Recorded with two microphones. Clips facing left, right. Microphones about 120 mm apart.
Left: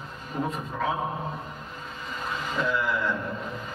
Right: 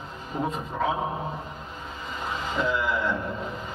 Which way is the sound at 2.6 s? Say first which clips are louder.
Right 1 dB; 20° right (ahead or behind).